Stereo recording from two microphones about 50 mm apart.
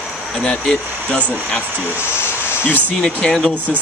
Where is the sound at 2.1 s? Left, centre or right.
Left.